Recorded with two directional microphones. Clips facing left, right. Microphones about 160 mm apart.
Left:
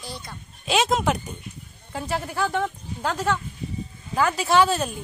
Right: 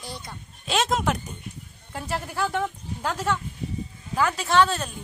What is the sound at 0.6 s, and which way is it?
A woman's voice, centre (ahead or behind).